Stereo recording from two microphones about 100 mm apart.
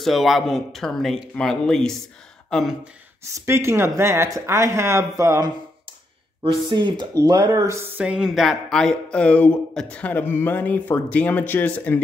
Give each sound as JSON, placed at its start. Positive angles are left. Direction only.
{"t": 0.0, "sound": "speech", "side_deg": 0}
{"t": 3.4, "sound": "speech", "side_deg": -25}
{"t": 6.7, "sound": "speech", "side_deg": -50}
{"t": 8.0, "sound": "speech", "side_deg": -5}